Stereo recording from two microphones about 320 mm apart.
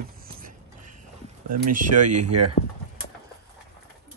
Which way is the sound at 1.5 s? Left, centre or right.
Right.